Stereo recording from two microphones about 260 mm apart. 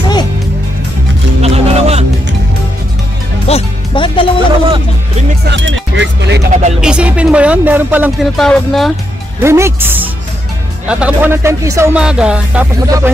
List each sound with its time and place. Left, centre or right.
1.4 s music: right
3.4 s music: left
5.5 s speech: right
6.8 s speech: centre
9.4 s speech: centre